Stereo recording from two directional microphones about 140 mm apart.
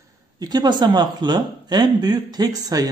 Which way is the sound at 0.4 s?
30° right (ahead or behind).